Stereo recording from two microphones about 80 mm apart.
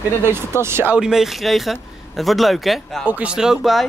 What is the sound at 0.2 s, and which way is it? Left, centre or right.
Speech, right.